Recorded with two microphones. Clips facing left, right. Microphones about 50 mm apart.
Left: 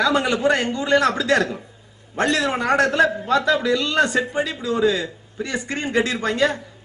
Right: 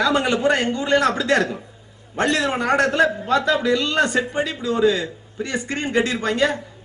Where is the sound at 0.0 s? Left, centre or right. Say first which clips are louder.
Even; right.